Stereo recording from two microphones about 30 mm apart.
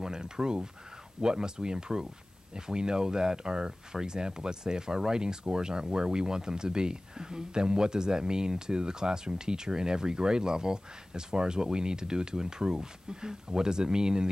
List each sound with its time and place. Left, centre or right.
0.0 s sheep: right
1.2 s speech: right